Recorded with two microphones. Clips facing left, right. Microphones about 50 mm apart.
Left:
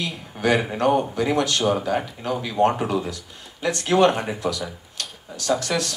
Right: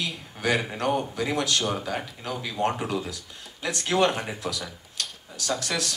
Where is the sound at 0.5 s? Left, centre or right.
Centre.